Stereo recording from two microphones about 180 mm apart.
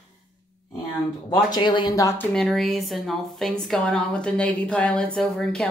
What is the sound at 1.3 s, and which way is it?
Speech, 25° left (ahead or behind).